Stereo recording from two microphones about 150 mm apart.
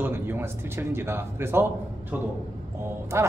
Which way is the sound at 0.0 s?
15° right (ahead or behind).